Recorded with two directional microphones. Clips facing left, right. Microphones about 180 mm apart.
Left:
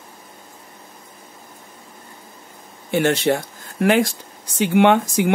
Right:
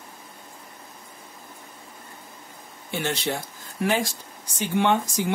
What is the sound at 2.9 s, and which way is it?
Speech, 55° left (ahead or behind).